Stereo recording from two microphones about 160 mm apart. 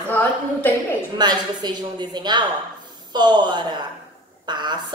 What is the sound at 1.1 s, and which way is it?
A woman's voice, 25° right (ahead or behind).